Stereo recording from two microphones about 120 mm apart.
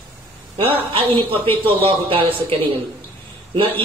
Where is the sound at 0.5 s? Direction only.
50° right (ahead or behind).